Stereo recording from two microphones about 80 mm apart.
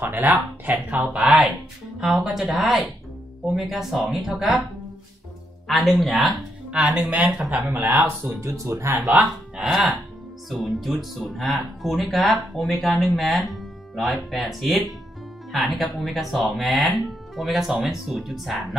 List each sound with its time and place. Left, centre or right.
0.0 s speech: right
2.0 s speech: centre
5.7 s speech: centre
6.7 s speech: centre
8.0 s speech: right
9.1 s speech: centre
10.5 s speech: centre